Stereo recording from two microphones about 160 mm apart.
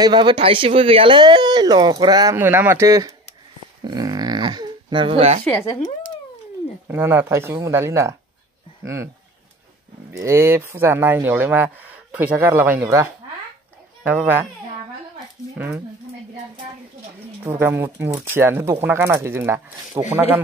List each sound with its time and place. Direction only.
0.0 s speech: 30° right (ahead or behind)
2.3 s speech: 15° right (ahead or behind)
3.8 s a sound: 25° right (ahead or behind)
5.4 s speech: 10° left (ahead or behind)
6.9 s speech: 15° right (ahead or behind)
10.1 s speech: 15° right (ahead or behind)
15.5 s speech: 10° right (ahead or behind)
17.4 s speech: 15° right (ahead or behind)